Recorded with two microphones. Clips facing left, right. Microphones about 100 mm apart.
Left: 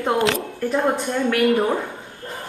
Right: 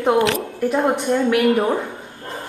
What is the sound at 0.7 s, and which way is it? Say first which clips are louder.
Speech: right 2 dB; 20° right (ahead or behind).